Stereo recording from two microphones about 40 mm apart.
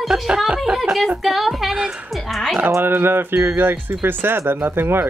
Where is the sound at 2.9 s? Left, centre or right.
Right.